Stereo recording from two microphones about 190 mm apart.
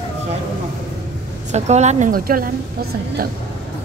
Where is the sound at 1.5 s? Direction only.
35° right (ahead or behind).